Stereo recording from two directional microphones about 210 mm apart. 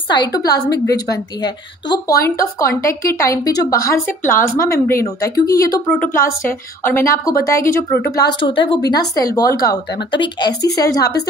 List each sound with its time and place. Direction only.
0.1 s a woman's voice: 20° left (ahead or behind)
4.4 s a woman's voice: 45° left (ahead or behind)
4.8 s a woman's voice: 15° left (ahead or behind)
5.9 s a woman's voice: 5° left (ahead or behind)